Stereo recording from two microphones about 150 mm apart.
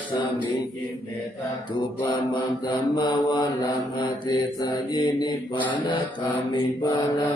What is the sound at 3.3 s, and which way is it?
Mantra, 30° left (ahead or behind).